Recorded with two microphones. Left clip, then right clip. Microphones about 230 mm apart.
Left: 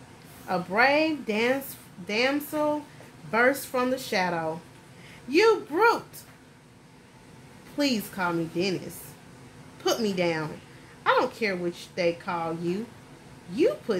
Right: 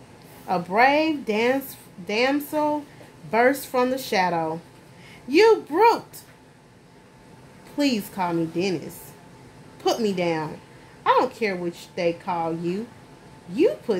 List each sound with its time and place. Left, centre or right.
0.5 s speech: right
7.7 s speech: centre
9.8 s a woman's voice: centre